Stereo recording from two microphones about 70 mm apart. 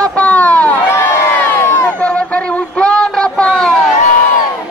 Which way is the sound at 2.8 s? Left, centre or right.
Centre.